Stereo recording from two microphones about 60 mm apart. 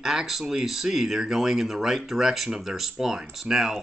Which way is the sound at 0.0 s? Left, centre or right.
Centre.